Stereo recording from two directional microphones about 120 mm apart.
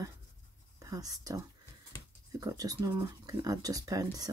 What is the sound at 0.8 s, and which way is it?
Speech, 30° right (ahead or behind).